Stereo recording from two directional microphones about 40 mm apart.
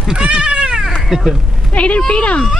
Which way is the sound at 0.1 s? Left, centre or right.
Right.